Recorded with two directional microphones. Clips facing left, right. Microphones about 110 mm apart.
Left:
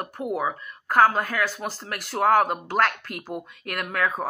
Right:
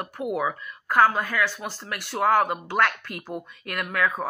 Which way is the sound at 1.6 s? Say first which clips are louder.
Left 3 dB; 50° left (ahead or behind).